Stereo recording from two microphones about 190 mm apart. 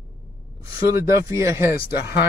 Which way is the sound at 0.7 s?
15° right (ahead or behind).